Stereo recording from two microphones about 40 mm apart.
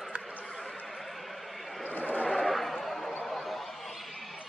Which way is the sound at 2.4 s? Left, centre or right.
Centre.